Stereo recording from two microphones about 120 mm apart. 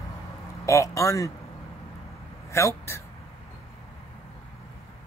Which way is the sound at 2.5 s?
25° left (ahead or behind).